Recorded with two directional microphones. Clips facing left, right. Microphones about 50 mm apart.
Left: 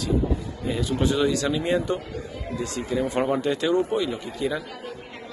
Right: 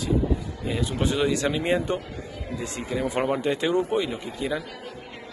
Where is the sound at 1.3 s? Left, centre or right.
Right.